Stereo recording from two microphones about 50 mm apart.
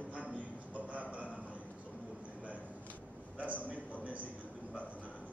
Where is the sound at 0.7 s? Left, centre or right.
Right.